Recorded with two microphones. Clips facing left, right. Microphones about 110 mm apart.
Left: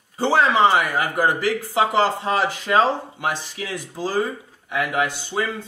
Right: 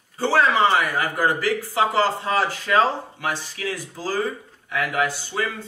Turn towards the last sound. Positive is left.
turn(degrees=20)  # may be behind; listen again after turning